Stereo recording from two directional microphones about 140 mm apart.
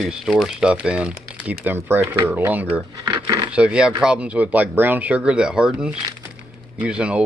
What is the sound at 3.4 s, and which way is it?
Speech, 5° right (ahead or behind).